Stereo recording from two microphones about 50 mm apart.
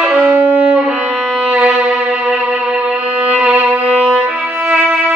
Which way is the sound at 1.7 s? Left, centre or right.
Centre.